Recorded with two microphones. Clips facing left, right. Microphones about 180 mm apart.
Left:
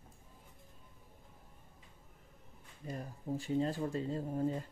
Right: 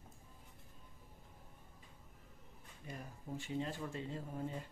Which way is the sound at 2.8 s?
35° left (ahead or behind).